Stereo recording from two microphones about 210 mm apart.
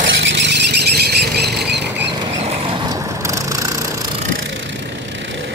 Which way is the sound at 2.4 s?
30° right (ahead or behind).